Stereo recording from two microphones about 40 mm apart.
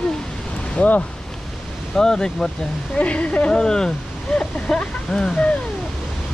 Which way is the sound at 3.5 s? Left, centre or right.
Centre.